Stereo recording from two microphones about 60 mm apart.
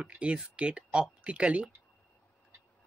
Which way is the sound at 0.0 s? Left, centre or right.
Centre.